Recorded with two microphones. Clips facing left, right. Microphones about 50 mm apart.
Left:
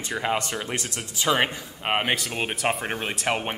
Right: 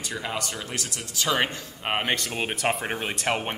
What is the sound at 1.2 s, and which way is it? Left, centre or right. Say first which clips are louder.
Speech: left 2 dB; centre.